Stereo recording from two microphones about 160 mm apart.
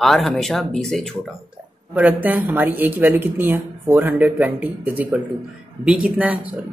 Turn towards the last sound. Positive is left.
turn(degrees=-10)  # may be behind; listen again after turning